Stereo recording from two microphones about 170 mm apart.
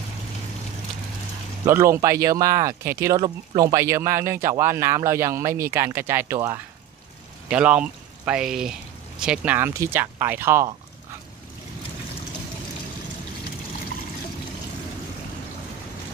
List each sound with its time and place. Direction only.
1.7 s speech: 15° right (ahead or behind)